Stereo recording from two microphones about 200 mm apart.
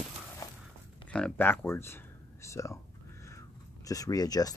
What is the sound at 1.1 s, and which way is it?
Speech, 5° left (ahead or behind).